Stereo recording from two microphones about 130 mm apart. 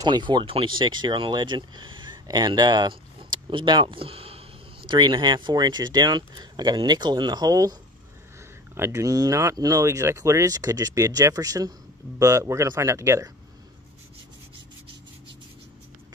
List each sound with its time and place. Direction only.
0.0 s speech: 35° right (ahead or behind)
8.7 s speech: 20° right (ahead or behind)